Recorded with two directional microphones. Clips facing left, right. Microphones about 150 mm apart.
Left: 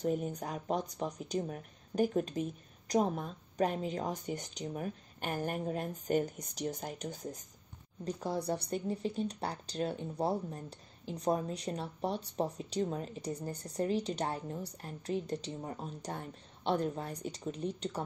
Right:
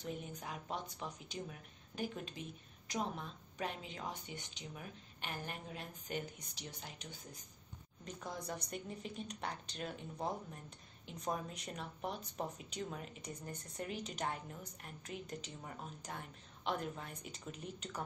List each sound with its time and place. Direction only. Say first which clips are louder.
0.0 s speech: left 11 dB; 45° left (ahead or behind)
8.0 s speech: left 10 dB; 35° left (ahead or behind)